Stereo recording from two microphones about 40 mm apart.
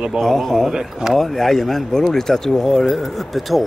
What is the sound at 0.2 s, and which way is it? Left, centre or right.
Speech, centre.